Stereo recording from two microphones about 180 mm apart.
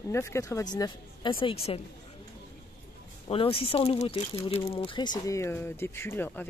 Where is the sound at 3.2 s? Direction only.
30° left (ahead or behind).